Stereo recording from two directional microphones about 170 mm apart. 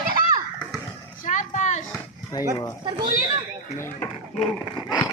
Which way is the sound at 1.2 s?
45° left (ahead or behind).